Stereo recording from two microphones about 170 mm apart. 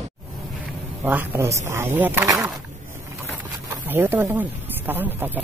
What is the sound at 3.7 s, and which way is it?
Speech, 10° right (ahead or behind).